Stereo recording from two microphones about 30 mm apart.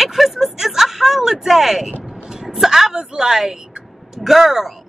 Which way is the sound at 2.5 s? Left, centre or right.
Centre.